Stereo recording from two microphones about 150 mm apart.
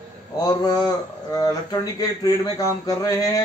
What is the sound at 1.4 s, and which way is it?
A man's voice, 25° left (ahead or behind).